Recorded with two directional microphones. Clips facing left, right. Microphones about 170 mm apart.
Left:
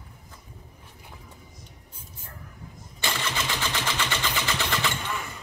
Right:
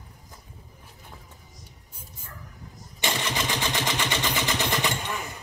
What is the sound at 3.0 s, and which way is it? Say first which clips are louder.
Vehicle: right 2 dB; 15° right (ahead or behind).